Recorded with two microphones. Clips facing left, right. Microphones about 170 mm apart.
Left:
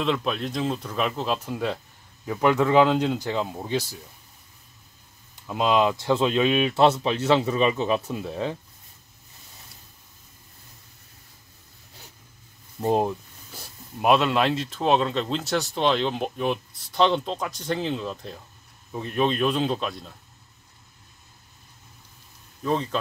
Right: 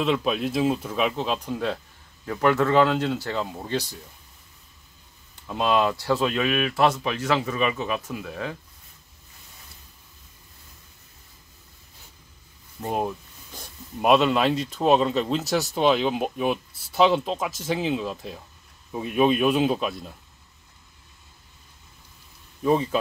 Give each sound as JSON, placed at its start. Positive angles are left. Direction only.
{"t": 0.0, "sound": "speech", "side_deg": -5}
{"t": 5.5, "sound": "speech", "side_deg": 15}
{"t": 12.8, "sound": "speech", "side_deg": 30}
{"t": 13.5, "sound": "speech", "side_deg": 0}
{"t": 22.6, "sound": "speech", "side_deg": -10}